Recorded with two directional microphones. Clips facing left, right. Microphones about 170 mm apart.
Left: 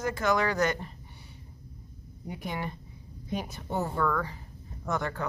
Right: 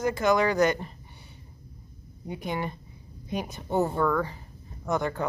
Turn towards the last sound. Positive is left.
turn(degrees=-15)  # may be behind; listen again after turning